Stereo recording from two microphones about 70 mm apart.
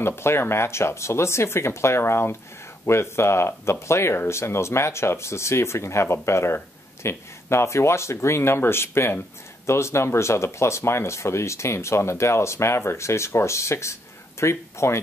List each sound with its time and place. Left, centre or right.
0.0 s speech: left